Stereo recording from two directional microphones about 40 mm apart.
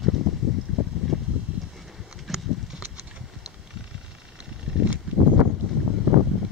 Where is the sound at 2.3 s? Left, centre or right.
Centre.